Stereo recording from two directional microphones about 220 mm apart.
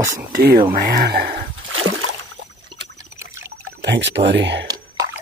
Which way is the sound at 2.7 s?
15° right (ahead or behind).